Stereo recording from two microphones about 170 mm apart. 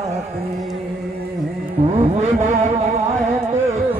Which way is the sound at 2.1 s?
40° right (ahead or behind).